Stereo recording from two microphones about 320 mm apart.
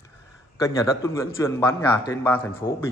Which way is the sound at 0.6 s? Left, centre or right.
Centre.